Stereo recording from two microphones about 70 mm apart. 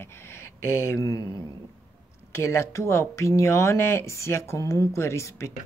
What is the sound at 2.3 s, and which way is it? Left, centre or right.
Speech, left.